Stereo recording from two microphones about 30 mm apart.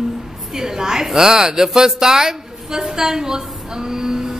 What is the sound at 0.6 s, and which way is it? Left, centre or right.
A woman's voice, centre.